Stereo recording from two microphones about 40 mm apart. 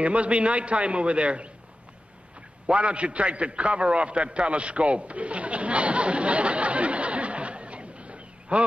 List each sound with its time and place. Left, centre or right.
0.0 s a man's voice: right
2.7 s a man's voice: right